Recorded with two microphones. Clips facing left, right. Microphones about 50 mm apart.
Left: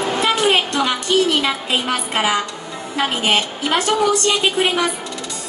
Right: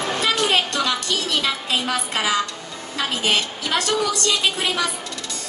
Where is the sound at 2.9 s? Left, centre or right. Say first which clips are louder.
Left 4 dB; left.